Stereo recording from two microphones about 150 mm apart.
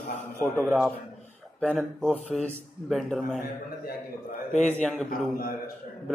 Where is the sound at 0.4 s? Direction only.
15° right (ahead or behind).